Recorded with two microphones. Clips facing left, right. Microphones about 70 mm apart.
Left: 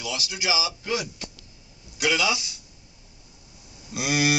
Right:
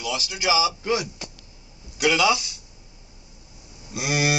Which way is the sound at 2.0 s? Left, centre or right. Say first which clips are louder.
Right 4 dB; centre.